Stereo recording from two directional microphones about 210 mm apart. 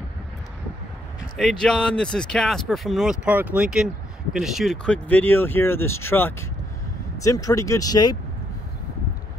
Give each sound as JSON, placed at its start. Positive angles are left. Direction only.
{"t": 1.3, "sound": "speech", "side_deg": 0}